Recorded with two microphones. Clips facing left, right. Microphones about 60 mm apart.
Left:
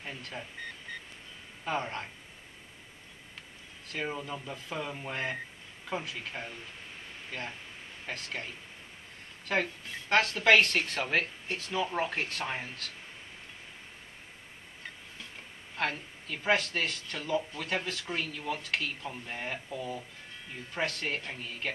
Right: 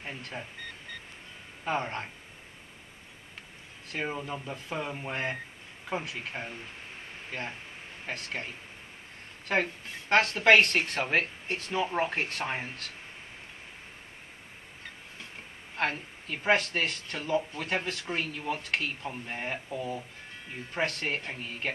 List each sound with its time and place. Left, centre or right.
0.3 s speech: centre
1.6 s speech: centre
3.9 s speech: centre
15.7 s speech: centre